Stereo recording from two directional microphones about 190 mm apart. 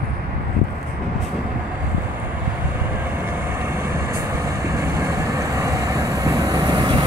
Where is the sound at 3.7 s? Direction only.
15° right (ahead or behind).